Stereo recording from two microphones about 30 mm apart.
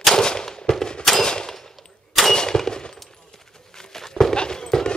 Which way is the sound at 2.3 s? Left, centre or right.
Left.